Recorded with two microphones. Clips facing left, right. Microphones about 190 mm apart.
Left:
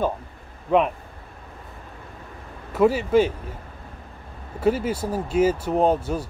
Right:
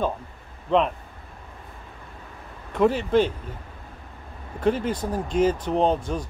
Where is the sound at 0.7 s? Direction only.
10° left (ahead or behind).